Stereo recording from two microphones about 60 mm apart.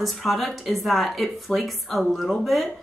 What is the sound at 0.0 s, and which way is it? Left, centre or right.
Speech, centre.